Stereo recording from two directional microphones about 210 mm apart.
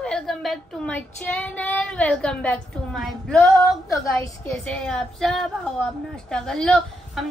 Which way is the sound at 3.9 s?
15° left (ahead or behind).